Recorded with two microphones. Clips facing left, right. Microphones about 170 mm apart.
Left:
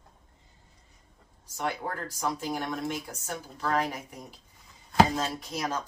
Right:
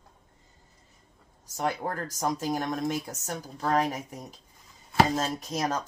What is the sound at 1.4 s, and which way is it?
Speech, 45° right (ahead or behind).